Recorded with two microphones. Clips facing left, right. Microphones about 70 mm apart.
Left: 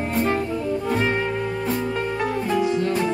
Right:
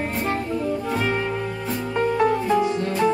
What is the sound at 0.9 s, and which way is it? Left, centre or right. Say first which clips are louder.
Music: left 3 dB; centre.